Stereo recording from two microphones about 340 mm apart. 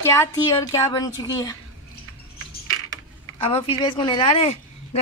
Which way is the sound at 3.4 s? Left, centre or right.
Centre.